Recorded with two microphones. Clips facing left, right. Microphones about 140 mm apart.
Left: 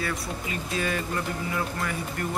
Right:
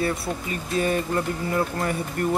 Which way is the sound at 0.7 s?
40° right (ahead or behind).